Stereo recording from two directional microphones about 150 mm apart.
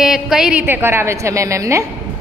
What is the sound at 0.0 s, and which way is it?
A woman's voice, 5° right (ahead or behind).